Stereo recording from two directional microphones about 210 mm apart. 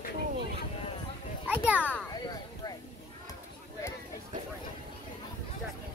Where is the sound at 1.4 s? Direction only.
10° right (ahead or behind).